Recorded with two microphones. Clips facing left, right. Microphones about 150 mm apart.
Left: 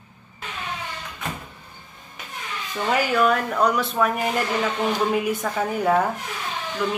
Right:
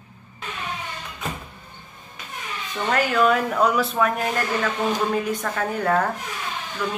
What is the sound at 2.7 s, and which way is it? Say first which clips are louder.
A woman's voice: even; 5° left (ahead or behind).